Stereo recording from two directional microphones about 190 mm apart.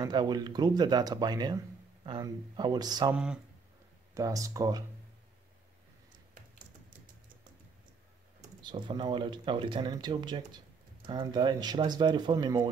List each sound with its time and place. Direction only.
0.0 s speech: 20° right (ahead or behind)
3.1 s speech: 5° right (ahead or behind)
4.1 s speech: 15° right (ahead or behind)
8.6 s speech: 25° right (ahead or behind)